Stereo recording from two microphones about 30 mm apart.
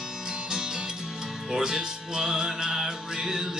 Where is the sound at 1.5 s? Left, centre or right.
Right.